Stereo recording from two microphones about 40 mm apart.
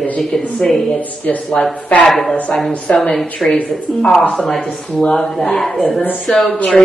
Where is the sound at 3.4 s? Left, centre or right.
Left.